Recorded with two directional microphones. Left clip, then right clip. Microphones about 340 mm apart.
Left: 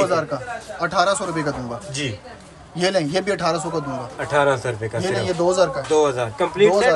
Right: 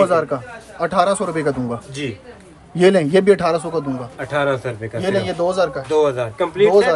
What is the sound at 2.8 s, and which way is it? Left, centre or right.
Speech, right.